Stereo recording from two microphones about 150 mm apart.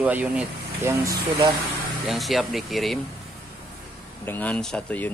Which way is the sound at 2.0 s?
Centre (ahead or behind).